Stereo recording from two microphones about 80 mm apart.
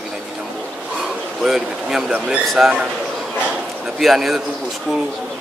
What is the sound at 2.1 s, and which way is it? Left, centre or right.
Speech, centre.